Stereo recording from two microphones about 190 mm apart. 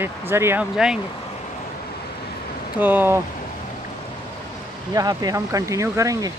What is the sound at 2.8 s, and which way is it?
Speech, 10° right (ahead or behind).